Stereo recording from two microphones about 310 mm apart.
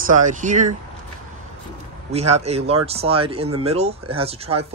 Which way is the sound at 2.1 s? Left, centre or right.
Right.